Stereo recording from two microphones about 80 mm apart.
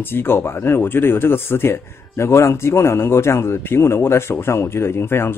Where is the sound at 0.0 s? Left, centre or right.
Left.